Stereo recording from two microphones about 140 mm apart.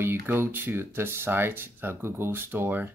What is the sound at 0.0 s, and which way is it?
Speech, 20° right (ahead or behind).